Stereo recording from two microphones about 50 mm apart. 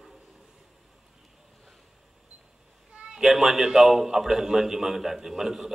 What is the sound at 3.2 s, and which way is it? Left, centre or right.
A man's voice, centre.